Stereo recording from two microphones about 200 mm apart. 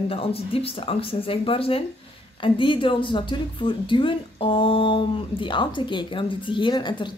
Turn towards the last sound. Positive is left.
turn(degrees=20)  # may be behind; listen again after turning